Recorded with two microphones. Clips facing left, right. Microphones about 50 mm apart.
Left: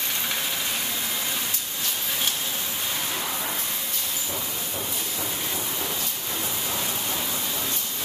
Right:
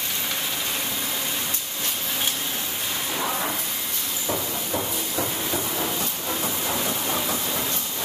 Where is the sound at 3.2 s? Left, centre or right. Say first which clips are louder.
Right 5 dB; right.